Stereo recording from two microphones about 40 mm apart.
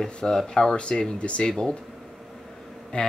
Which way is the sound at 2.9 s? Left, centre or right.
Left.